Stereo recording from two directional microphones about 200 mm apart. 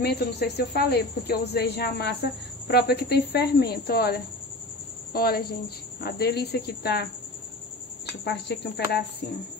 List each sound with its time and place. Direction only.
0.0 s speech: 55° left (ahead or behind)
8.2 s speech: 55° left (ahead or behind)